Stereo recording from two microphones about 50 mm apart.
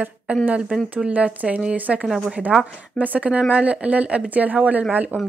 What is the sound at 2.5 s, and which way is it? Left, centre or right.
Speech, centre.